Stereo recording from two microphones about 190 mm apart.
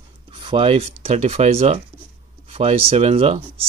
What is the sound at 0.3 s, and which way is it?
Speech, 25° right (ahead or behind).